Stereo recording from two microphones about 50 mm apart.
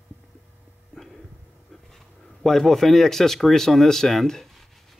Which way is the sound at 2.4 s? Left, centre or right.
Centre.